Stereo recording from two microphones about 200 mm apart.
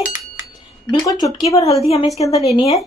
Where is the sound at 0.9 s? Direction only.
20° left (ahead or behind).